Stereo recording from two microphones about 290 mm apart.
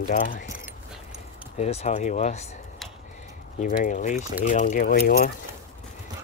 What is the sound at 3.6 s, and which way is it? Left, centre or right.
Speech, left.